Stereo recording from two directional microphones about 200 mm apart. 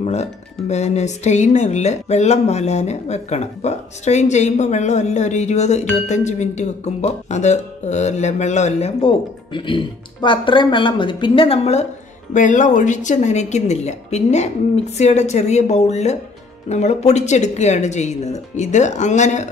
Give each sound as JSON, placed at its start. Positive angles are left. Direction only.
{"t": 0.0, "sound": "speech", "side_deg": 35}